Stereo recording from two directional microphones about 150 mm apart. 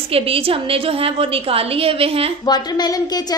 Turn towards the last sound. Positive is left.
turn(degrees=25)  # may be behind; listen again after turning